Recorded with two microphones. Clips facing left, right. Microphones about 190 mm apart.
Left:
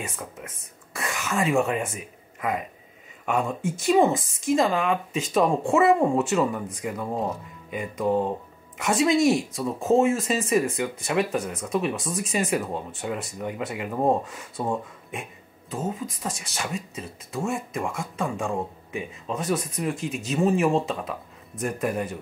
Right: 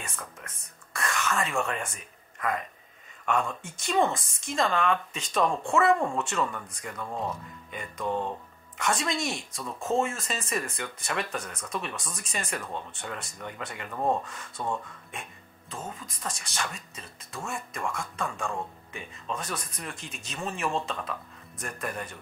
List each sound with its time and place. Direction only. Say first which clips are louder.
0.1 s speech: left 5 dB; 15° left (ahead or behind)
0.5 s cough: left 2 dB; 5° left (ahead or behind)
1.6 s speech: left 7 dB; 5° left (ahead or behind)
7.1 s speech: left 4 dB; 25° left (ahead or behind)
7.7 s speech: left 7 dB; 5° left (ahead or behind)
17.4 s speech: left 7 dB; 15° left (ahead or behind)
17.9 s speech: left 3 dB; 5° left (ahead or behind)
18.2 s speech: left 6 dB; 15° left (ahead or behind)
18.9 s speech: left 6 dB; 5° left (ahead or behind)